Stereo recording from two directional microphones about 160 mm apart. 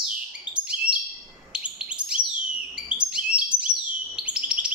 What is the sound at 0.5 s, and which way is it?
Chirp, 30° left (ahead or behind).